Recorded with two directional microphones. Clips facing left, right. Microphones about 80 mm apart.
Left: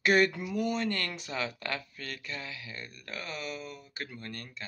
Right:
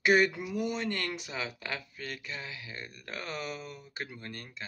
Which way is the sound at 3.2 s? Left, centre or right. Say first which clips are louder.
Right 1 dB; right.